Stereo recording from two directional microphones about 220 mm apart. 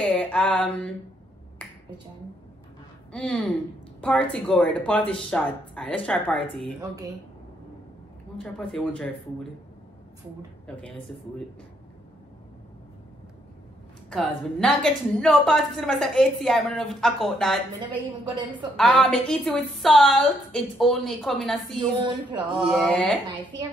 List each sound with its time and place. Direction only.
0.0 s mantra: 5° left (ahead or behind)
1.6 s finger snapping: 5° left (ahead or behind)
3.1 s a woman's voice: 5° left (ahead or behind)
8.5 s a woman's voice: 5° left (ahead or behind)
10.8 s a woman's voice: centre (ahead or behind)
14.1 s a woman's voice: 5° left (ahead or behind)
17.8 s a woman's voice: 20° right (ahead or behind)
18.8 s a woman's voice: centre (ahead or behind)
21.7 s a woman's voice: 20° right (ahead or behind)
22.6 s a woman's voice: centre (ahead or behind)